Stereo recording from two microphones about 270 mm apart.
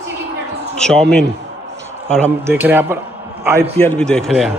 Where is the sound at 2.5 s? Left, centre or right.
Centre.